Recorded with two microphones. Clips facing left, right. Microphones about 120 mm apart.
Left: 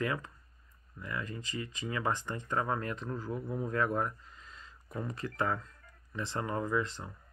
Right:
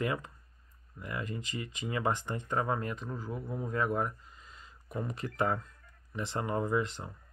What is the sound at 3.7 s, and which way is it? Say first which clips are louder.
Speech: right 1 dB; 10° right (ahead or behind).